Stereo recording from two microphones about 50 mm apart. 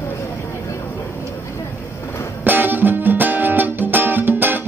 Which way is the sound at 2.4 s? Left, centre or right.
Right.